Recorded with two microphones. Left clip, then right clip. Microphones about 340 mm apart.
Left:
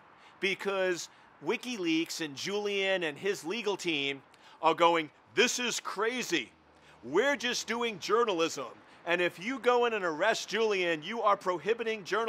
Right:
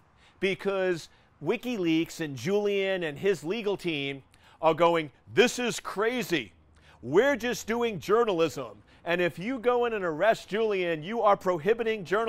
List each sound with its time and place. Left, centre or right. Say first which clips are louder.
0.4 s speech: right 3 dB; right
7.1 s speech: right 4 dB; right